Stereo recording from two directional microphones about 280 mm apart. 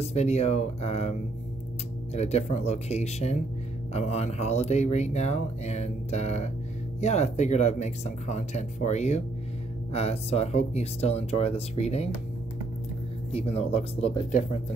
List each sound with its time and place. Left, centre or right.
0.0 s speech: left
2.1 s speech: left
13.3 s speech: left